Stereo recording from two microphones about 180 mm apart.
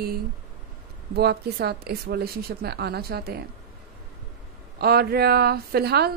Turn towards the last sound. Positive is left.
turn(degrees=-60)  # may be behind; listen again after turning